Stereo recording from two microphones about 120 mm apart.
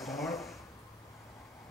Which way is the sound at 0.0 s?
Centre (ahead or behind).